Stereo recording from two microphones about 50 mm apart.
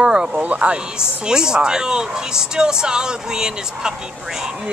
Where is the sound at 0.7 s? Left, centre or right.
Centre.